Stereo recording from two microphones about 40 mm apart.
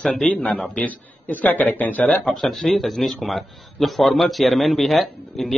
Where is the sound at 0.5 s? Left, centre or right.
Left.